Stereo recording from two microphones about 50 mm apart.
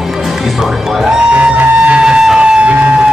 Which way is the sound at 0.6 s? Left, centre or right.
Centre.